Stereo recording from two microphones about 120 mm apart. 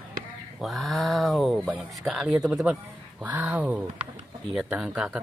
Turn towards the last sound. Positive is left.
turn(degrees=-5)  # may be behind; listen again after turning